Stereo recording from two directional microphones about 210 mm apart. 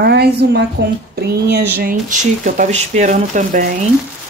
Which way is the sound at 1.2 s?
50° right (ahead or behind).